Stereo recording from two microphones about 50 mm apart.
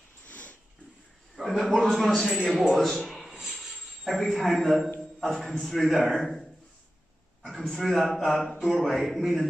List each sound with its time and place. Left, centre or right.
0.2 s sniff: left
1.3 s mantra: centre
2.3 s a man's voice: centre
2.8 s a sound: centre
5.2 s a man's voice: centre
6.1 s a sound: centre
7.4 s a man's voice: centre
8.1 s mantra: centre